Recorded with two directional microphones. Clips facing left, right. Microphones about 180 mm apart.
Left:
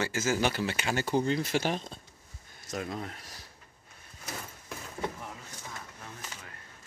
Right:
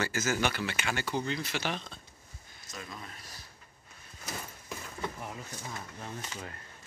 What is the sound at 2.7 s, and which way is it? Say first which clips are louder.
Speech: left 9 dB; 65° left (ahead or behind).